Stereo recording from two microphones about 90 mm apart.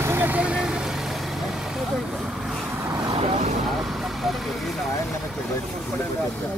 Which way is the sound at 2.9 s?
40° right (ahead or behind).